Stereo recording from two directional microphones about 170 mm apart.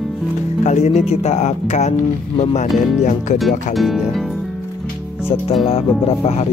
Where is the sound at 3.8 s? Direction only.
Centre (ahead or behind).